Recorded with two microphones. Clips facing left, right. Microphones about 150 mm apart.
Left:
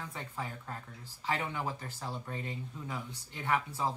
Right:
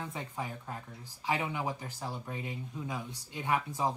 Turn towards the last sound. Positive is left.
turn(degrees=-15)  # may be behind; listen again after turning